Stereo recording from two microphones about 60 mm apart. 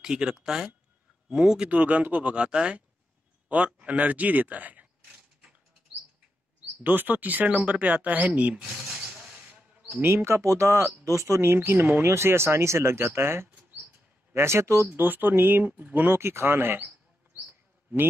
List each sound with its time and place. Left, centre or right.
0.0 s speech: centre
1.7 s speech: right
6.8 s speech: right
8.8 s a sound: centre
9.5 s bird: right
10.0 s speech: right
11.4 s speech: right
14.9 s speech: right
16.2 s speech: right